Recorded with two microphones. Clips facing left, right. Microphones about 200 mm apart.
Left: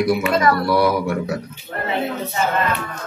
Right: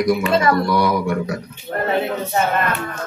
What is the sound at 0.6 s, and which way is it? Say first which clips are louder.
Speech: left 1 dB; 5° left (ahead or behind).